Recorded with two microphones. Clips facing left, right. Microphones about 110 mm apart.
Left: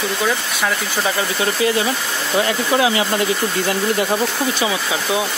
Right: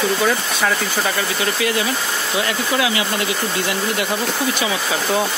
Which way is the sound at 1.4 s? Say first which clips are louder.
Left 3 dB; 30° left (ahead or behind).